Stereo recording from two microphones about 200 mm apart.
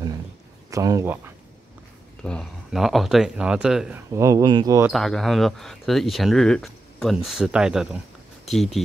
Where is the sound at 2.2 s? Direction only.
5° left (ahead or behind).